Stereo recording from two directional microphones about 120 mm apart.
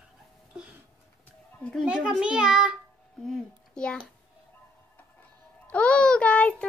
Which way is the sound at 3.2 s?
5° left (ahead or behind).